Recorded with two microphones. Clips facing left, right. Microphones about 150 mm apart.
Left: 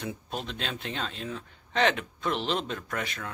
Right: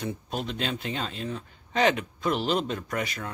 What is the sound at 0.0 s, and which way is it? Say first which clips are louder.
Speech: right 3 dB; centre (ahead or behind).